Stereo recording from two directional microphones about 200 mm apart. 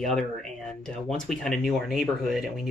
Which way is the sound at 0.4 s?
Centre (ahead or behind).